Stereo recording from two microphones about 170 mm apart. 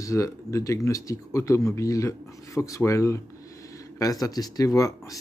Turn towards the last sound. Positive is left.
turn(degrees=20)  # may be behind; listen again after turning